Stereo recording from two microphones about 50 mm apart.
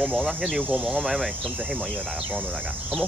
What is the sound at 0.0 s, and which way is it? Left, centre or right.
Speech, centre.